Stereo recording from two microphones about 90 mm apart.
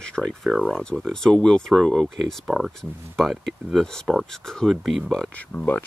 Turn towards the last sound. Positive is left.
turn(degrees=15)  # may be behind; listen again after turning